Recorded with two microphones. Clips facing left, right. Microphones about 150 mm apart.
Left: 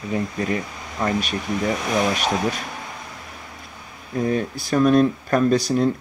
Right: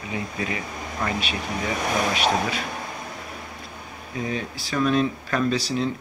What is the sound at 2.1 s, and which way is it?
Speech, 45° left (ahead or behind).